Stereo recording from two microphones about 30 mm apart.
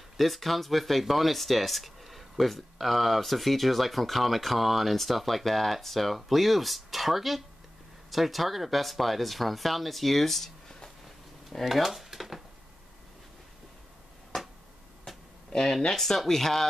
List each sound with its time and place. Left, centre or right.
0.2 s speech: centre
11.6 s speech: centre
14.3 s a sound: centre
15.5 s speech: left
15.9 s speech: centre